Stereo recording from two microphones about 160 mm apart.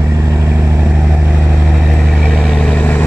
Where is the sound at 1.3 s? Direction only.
10° right (ahead or behind).